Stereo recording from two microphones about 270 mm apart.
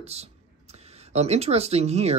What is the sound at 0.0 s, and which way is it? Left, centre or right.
Speech, right.